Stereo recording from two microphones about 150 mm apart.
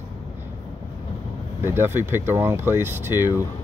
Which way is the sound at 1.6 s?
15° right (ahead or behind).